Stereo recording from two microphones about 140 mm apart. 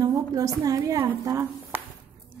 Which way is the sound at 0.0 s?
25° right (ahead or behind).